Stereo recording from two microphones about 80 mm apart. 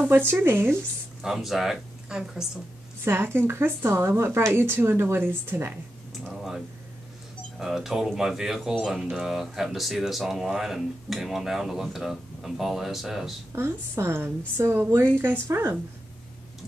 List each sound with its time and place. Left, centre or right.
0.3 s a woman's voice: right
1.2 s speech: centre
3.1 s a woman's voice: right
6.3 s a sound: centre
7.5 s speech: centre
13.6 s a woman's voice: right